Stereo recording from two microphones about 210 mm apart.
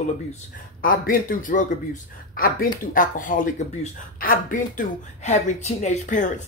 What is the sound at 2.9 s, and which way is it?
Speech, 40° left (ahead or behind).